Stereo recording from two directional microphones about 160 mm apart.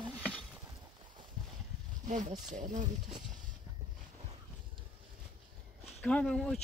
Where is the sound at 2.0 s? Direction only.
50° right (ahead or behind).